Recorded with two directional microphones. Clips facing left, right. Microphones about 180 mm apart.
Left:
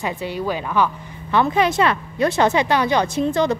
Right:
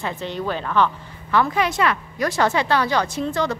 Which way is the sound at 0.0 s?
15° left (ahead or behind).